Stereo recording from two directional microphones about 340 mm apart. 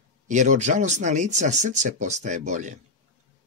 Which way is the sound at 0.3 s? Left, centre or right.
Right.